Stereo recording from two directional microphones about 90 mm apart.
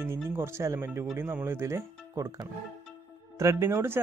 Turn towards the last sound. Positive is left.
turn(degrees=-30)  # may be behind; listen again after turning